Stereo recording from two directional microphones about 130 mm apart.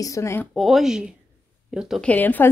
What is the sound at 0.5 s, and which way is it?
A woman's voice, centre (ahead or behind).